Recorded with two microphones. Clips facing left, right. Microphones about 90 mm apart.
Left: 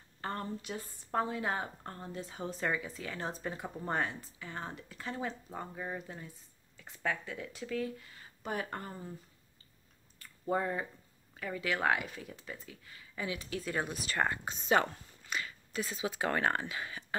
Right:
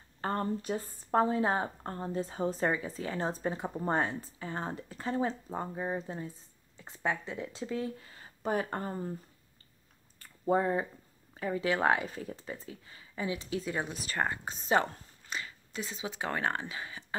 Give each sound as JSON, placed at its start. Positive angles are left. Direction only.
{"t": 0.2, "sound": "a woman's voice", "side_deg": -35}
{"t": 10.1, "sound": "a sound", "side_deg": -35}
{"t": 11.3, "sound": "speech", "side_deg": -30}
{"t": 13.5, "sound": "speech", "side_deg": -15}
{"t": 14.4, "sound": "speech", "side_deg": -35}